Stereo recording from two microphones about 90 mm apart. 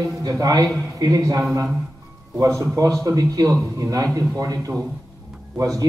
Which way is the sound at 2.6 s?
35° right (ahead or behind).